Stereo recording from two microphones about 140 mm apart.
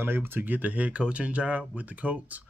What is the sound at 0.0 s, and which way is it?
Speech, 15° right (ahead or behind).